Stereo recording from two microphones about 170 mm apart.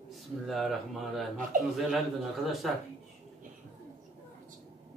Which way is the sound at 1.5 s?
50° right (ahead or behind).